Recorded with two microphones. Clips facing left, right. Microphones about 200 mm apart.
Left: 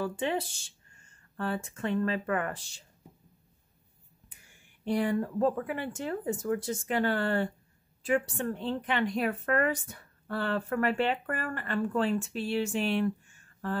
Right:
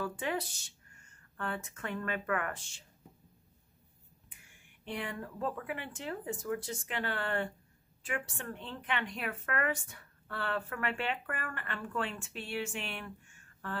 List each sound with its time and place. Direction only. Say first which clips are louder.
0.0 s speech: left 5 dB; 25° left (ahead or behind)
4.8 s speech: left 11 dB; 40° left (ahead or behind)